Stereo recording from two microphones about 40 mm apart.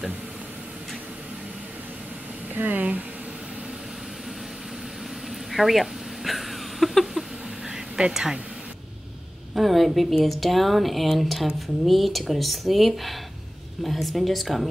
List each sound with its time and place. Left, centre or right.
2.5 s speech: right
5.5 s a sound: centre
8.1 s speech: centre
9.6 s speech: centre